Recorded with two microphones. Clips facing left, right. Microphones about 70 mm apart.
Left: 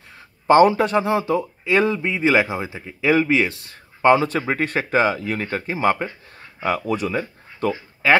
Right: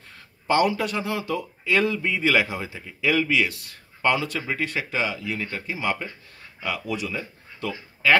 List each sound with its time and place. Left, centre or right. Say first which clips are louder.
0.5 s speech: left 8 dB; left